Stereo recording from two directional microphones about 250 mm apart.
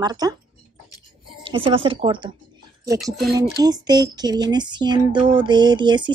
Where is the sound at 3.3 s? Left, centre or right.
Centre.